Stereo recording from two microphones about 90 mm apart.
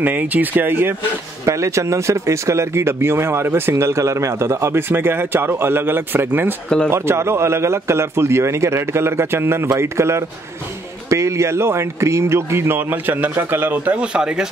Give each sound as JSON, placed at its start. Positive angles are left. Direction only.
{"t": 0.0, "sound": "speech", "side_deg": -20}
{"t": 1.4, "sound": "a man's voice", "side_deg": -35}
{"t": 13.9, "sound": "speech", "side_deg": -10}